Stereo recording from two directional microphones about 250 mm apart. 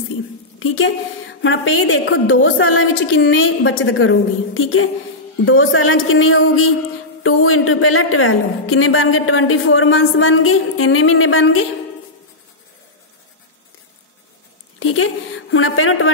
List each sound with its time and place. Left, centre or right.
0.6 s a woman's voice: left
14.8 s a woman's voice: left